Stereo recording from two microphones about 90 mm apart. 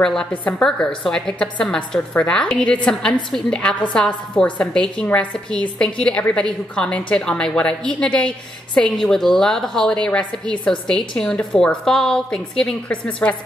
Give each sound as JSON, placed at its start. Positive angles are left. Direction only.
{"t": 0.0, "sound": "a woman's voice", "side_deg": 5}
{"t": 0.7, "sound": "a woman's voice", "side_deg": 5}